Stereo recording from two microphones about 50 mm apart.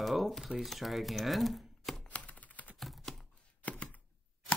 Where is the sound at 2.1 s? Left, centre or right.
Left.